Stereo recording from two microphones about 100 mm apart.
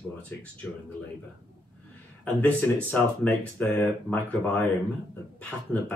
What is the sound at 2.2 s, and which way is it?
Speech, 15° left (ahead or behind).